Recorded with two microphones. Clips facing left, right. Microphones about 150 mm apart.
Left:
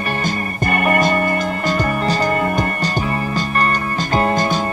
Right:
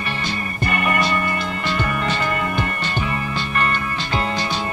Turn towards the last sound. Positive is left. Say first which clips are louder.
# left 6 dB
turn(degrees=45)  # may be behind; listen again after turning